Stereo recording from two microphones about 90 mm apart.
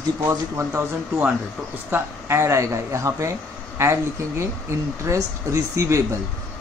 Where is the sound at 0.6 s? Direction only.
30° right (ahead or behind).